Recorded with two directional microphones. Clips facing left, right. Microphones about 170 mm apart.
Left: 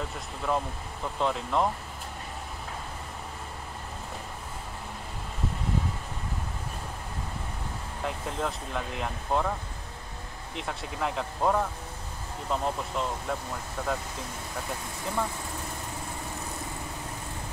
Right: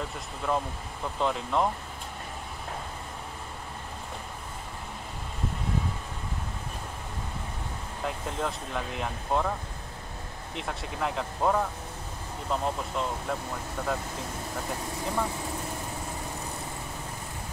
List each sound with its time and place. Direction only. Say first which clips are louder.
0.4 s speech: even; centre (ahead or behind)
8.0 s speech: even; centre (ahead or behind)
10.5 s speech: even; centre (ahead or behind)